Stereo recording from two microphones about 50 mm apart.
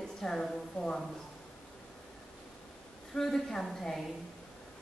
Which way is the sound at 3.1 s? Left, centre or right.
Centre.